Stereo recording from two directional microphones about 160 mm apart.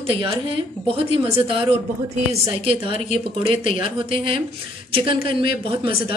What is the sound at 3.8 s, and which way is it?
Speech, 35° right (ahead or behind).